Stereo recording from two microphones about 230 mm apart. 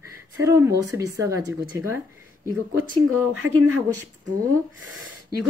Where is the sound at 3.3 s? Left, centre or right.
Right.